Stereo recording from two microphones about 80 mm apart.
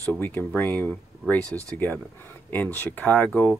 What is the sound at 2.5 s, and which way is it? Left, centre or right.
Speech, left.